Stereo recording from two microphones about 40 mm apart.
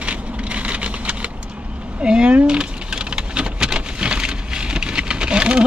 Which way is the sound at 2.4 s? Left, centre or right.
Right.